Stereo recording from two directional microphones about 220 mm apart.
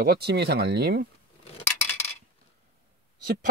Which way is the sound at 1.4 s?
25° left (ahead or behind).